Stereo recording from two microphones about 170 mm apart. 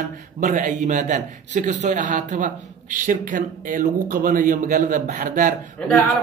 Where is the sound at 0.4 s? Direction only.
45° right (ahead or behind).